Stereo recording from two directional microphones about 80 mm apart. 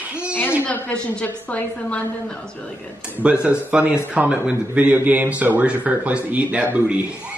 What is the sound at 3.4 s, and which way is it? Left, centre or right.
Speech, centre.